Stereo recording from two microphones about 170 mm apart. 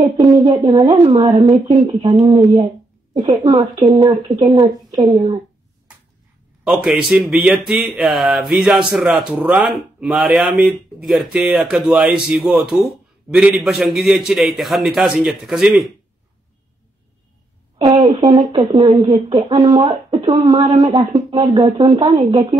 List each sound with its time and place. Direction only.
0.2 s a woman's voice: 20° right (ahead or behind)
5.1 s a woman's voice: 30° right (ahead or behind)
6.6 s speech: 5° right (ahead or behind)
17.7 s a woman's voice: 30° right (ahead or behind)